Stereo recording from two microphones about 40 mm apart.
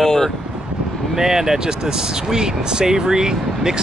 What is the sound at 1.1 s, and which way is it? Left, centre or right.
Speech, centre.